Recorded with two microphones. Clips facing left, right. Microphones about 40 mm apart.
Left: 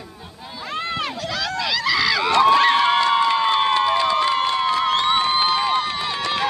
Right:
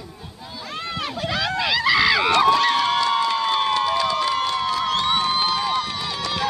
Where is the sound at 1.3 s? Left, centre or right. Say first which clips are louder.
Right 2 dB; right.